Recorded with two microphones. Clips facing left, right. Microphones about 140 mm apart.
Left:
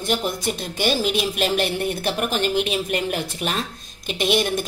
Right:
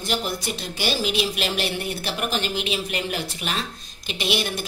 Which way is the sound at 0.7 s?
50° left (ahead or behind).